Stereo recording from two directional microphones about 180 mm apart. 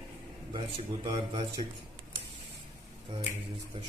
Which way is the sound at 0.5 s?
30° right (ahead or behind).